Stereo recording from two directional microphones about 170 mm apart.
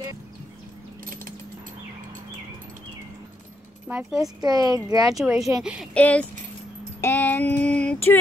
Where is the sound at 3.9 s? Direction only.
10° right (ahead or behind).